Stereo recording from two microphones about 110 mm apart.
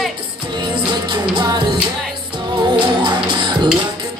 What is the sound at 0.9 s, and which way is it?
Music, 45° right (ahead or behind).